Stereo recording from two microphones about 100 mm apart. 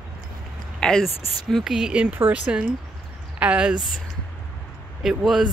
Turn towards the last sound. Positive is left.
turn(degrees=-5)  # may be behind; listen again after turning